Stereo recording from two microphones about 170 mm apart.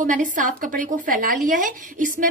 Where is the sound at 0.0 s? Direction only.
50° right (ahead or behind).